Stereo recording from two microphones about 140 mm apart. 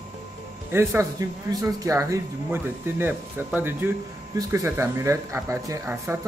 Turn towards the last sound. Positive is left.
turn(degrees=-15)  # may be behind; listen again after turning